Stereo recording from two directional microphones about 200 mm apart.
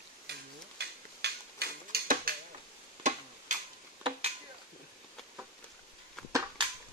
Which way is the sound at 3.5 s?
35° right (ahead or behind).